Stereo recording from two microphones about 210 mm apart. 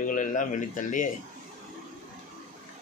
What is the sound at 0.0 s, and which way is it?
Speech, 40° left (ahead or behind).